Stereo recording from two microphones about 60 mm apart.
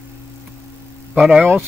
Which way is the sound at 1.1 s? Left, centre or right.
Centre.